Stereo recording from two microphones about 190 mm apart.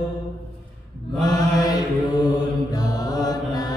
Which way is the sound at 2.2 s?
20° left (ahead or behind).